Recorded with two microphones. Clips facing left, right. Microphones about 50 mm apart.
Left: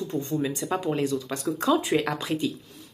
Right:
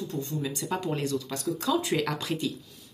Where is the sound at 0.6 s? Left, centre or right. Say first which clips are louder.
Left 2 dB; centre.